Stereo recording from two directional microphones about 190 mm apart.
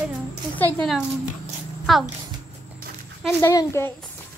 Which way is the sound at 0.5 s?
10° left (ahead or behind).